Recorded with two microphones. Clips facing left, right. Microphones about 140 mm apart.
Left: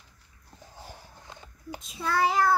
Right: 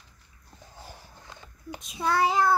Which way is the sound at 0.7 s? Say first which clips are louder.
Even; 15° left (ahead or behind).